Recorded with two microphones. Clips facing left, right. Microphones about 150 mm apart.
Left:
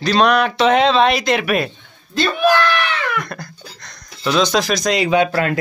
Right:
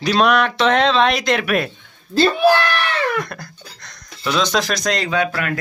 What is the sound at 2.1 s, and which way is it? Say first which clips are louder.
Speech: right 2 dB; 30° right (ahead or behind).